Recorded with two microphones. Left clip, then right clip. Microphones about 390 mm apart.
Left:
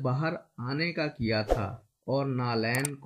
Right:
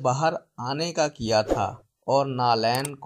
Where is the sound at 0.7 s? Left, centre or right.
Right.